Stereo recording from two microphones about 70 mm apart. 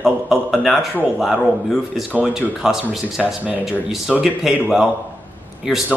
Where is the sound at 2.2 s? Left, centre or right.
Centre.